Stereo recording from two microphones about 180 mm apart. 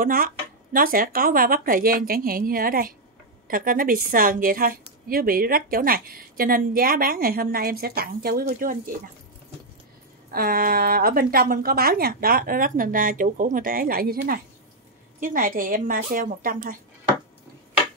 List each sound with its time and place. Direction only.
0.0 s a woman's voice: 50° right (ahead or behind)
10.3 s a woman's voice: 55° right (ahead or behind)